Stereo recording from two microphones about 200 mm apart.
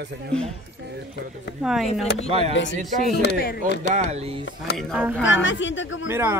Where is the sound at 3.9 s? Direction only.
40° right (ahead or behind).